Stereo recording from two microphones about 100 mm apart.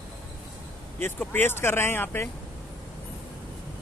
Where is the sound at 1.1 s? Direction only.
20° left (ahead or behind).